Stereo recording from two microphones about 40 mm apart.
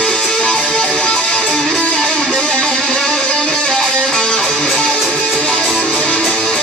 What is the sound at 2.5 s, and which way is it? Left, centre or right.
Music, left.